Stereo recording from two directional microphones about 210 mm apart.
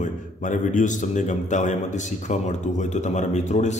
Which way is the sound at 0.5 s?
35° left (ahead or behind).